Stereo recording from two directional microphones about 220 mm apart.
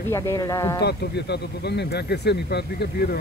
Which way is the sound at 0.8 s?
50° left (ahead or behind).